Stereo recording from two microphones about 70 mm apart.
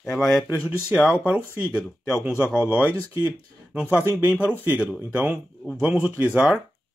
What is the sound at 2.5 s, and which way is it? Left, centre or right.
Speech, centre.